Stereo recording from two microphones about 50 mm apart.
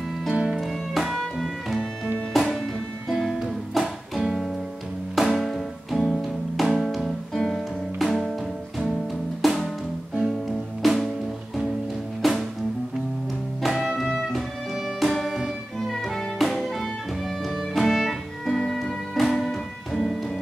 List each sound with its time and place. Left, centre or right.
0.3 s music: right
0.6 s music: centre
9.4 s music: centre
10.8 s music: centre
12.2 s music: centre
13.6 s music: centre